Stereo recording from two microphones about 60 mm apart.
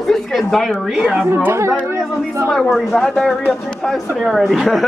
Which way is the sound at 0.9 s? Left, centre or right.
Centre.